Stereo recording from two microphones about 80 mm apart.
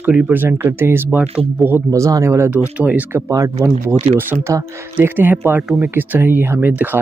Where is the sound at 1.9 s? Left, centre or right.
Right.